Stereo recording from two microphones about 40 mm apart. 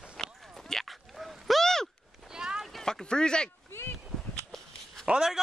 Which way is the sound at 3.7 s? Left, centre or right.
Left.